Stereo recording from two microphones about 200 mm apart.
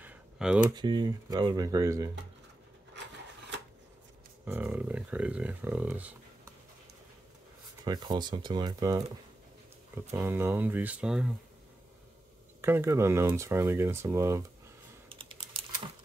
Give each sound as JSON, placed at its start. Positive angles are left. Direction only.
{"t": 0.0, "sound": "a sound", "side_deg": -5}
{"t": 0.7, "sound": "speech", "side_deg": -20}
{"t": 4.5, "sound": "speech", "side_deg": -10}
{"t": 7.8, "sound": "speech", "side_deg": -20}
{"t": 12.6, "sound": "speech", "side_deg": -10}
{"t": 15.0, "sound": "typing", "side_deg": -25}